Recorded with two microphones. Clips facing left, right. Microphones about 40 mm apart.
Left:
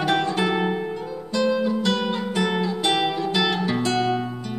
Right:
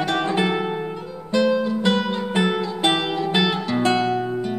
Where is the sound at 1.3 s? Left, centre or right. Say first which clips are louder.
Right 3 dB; centre.